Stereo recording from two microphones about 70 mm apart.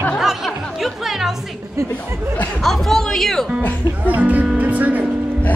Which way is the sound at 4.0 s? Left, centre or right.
Right.